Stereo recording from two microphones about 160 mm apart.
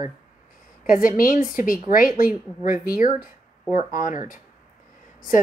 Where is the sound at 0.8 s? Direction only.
55° left (ahead or behind).